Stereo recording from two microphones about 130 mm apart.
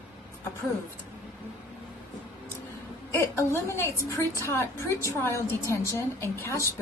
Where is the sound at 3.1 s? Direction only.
20° left (ahead or behind).